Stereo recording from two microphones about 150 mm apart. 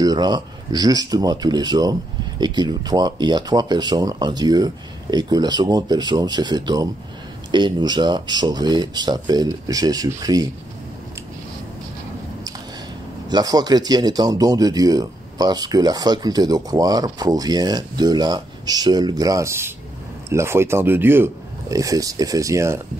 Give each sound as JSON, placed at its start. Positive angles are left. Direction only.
{"t": 0.0, "sound": "speech", "side_deg": -25}
{"t": 13.3, "sound": "speech", "side_deg": -25}